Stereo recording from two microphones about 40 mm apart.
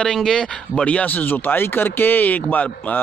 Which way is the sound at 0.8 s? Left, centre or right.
Left.